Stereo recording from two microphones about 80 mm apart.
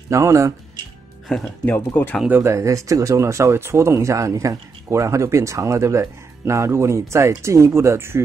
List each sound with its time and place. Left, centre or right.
0.1 s speech: right
1.7 s speech: left
2.4 s speech: right